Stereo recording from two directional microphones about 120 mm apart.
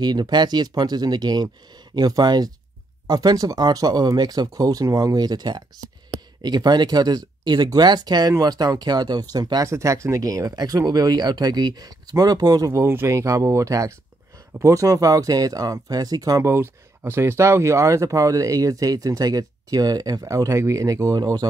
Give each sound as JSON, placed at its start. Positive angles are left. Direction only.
{"t": 0.0, "sound": "speech", "side_deg": -35}